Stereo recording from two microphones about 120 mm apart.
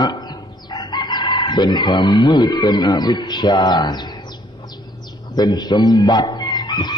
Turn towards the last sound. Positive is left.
turn(degrees=35)  # may be behind; listen again after turning